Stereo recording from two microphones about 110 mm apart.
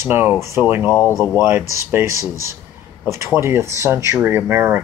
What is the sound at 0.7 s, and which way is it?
Speech, 20° right (ahead or behind).